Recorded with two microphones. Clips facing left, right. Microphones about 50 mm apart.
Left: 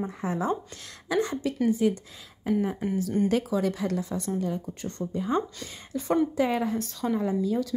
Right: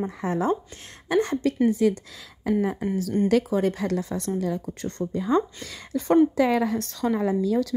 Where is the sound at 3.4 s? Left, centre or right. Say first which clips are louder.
Right 3 dB; right.